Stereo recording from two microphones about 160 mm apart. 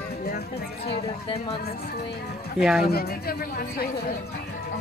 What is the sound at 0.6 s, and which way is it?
Speech, 90° left.